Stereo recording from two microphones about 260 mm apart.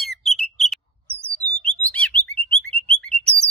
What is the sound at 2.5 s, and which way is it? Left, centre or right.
Bird, right.